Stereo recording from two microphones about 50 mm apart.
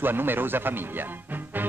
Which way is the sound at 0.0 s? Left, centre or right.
Right.